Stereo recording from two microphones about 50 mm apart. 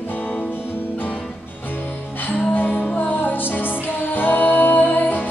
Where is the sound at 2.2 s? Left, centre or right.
Left.